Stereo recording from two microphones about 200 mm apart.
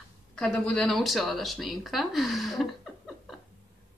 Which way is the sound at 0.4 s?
5° left (ahead or behind).